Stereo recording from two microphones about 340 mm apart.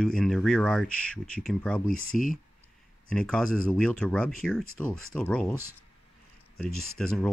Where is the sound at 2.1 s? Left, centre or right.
Left.